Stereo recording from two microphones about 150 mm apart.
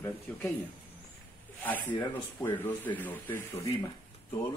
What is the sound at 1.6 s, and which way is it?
Speech, 15° left (ahead or behind).